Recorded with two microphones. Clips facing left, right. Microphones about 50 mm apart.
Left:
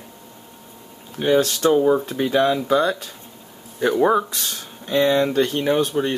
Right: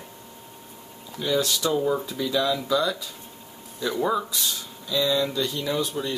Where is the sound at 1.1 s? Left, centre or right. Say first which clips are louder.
Left 7 dB; left.